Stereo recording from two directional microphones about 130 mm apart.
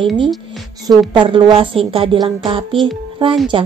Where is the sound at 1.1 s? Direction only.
40° right (ahead or behind).